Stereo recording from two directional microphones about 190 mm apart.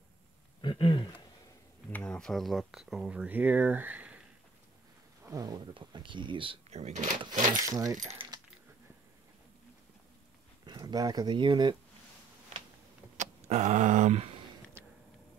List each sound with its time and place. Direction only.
0.6 s a sound: 25° left (ahead or behind)
1.9 s speech: 5° left (ahead or behind)
5.2 s speech: 20° right (ahead or behind); by 7.6 s 40° right (ahead or behind)
8.0 s coin: 35° right (ahead or behind)
10.6 s speech: 20° right (ahead or behind)
13.2 s a sound: 40° right (ahead or behind)